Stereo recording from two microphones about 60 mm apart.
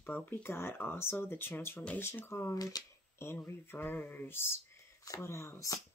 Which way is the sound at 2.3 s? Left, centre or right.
Left.